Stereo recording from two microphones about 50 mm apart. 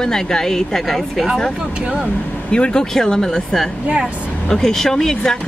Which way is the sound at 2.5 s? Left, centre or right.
Centre.